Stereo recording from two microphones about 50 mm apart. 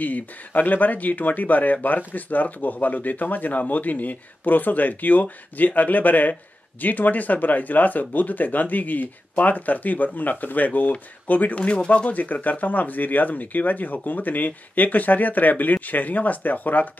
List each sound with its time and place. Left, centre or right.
0.0 s speech: left